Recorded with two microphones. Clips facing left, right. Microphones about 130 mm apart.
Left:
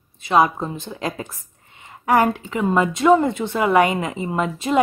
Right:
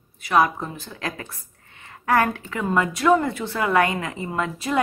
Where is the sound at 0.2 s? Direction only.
20° left (ahead or behind).